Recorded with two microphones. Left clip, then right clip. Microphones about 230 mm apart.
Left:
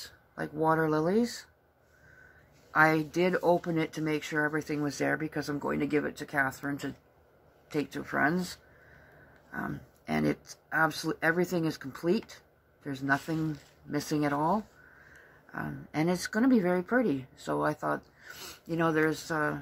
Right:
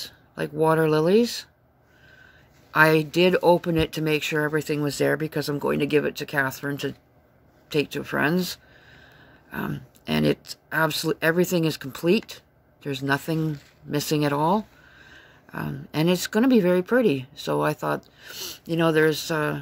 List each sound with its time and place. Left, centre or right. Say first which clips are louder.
0.4 s speech: right 7 dB; right
2.7 s speech: right 6 dB; right
18.3 s speech: right 9 dB; right
18.9 s speech: right 7 dB; right